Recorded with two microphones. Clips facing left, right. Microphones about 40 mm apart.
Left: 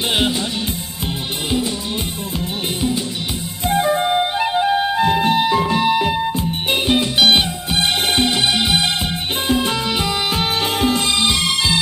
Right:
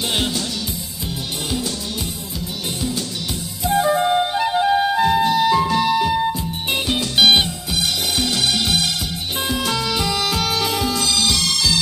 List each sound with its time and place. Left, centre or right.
5.2 s music: left